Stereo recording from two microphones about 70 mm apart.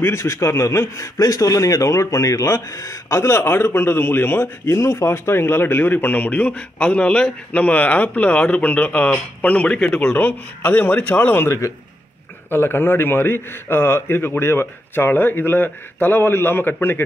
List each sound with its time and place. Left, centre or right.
0.0 s a man's voice: left
11.4 s a man's voice: left